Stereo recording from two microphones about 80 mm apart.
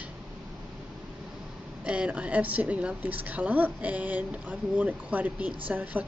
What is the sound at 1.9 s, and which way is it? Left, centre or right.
A woman's voice, centre.